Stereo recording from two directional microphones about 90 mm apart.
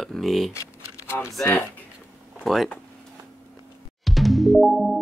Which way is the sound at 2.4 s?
Centre (ahead or behind).